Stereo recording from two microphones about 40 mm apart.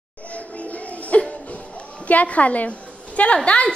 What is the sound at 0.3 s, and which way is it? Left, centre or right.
Music, left.